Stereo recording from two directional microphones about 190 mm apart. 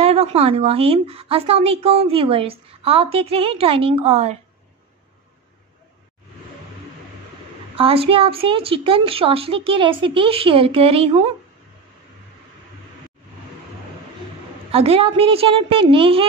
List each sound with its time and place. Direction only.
0.0 s a woman's voice: 35° right (ahead or behind)
7.7 s a woman's voice: 30° right (ahead or behind)
14.7 s a woman's voice: 30° right (ahead or behind)